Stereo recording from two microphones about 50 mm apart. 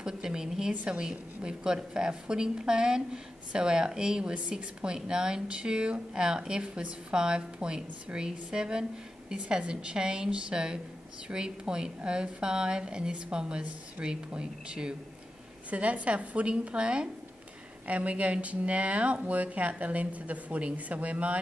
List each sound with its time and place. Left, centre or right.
0.0 s a woman's voice: centre
17.8 s speech: right